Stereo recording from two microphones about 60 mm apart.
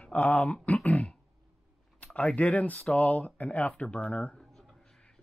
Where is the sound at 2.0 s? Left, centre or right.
Left.